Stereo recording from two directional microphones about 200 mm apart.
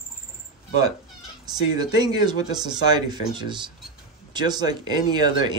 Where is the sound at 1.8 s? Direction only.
20° right (ahead or behind).